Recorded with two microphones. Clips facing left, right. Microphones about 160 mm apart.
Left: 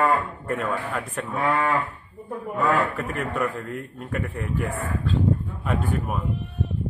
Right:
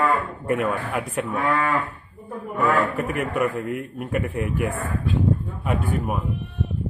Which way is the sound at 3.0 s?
15° right (ahead or behind).